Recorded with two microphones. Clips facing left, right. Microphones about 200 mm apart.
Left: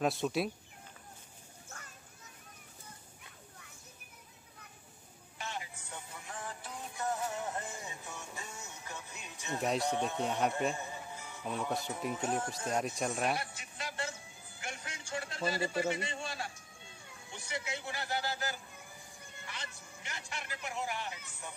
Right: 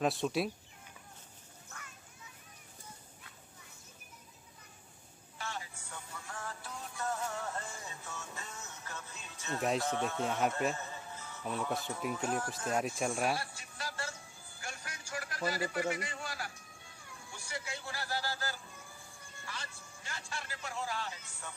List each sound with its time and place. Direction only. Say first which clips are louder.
0.0 s speech: even; centre (ahead or behind)
5.4 s music: left 1 dB; 20° left (ahead or behind)
9.6 s speech: even; centre (ahead or behind)
10.8 s music: left 2 dB; 15° left (ahead or behind)
12.1 s speech: left 1 dB; 25° left (ahead or behind)
12.6 s speech: right 2 dB; centre (ahead or behind)
13.3 s music: even; 20° left (ahead or behind)
14.6 s a sound: left 2 dB; 20° left (ahead or behind)